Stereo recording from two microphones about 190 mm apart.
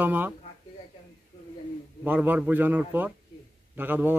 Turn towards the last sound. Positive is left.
turn(degrees=-10)  # may be behind; listen again after turning